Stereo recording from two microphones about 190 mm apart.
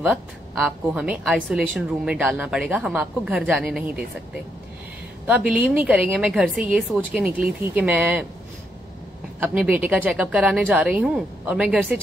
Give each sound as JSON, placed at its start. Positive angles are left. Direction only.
{"t": 0.0, "sound": "a woman's voice", "side_deg": 0}
{"t": 5.2, "sound": "a woman's voice", "side_deg": -10}
{"t": 9.4, "sound": "a woman's voice", "side_deg": -10}